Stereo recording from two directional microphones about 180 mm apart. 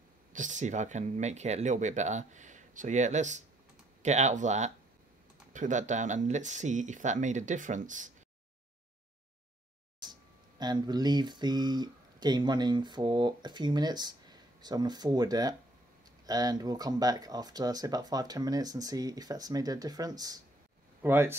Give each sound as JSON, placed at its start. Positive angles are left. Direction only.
{"t": 0.3, "sound": "speech", "side_deg": -45}
{"t": 10.6, "sound": "speech", "side_deg": -25}